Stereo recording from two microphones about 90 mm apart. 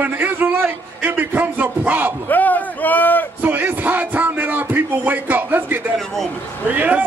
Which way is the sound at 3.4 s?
20° right (ahead or behind).